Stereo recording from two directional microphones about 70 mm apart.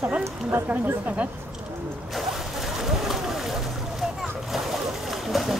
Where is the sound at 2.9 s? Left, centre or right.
Centre.